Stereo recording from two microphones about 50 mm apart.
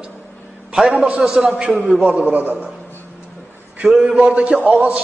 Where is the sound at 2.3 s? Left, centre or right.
Right.